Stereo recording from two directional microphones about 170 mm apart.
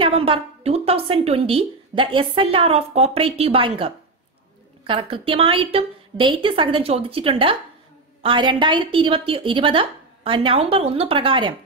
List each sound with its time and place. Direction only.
0.0 s a woman's voice: 35° right (ahead or behind)